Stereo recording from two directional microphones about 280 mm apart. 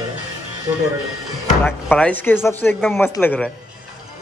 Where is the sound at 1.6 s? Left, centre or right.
Centre.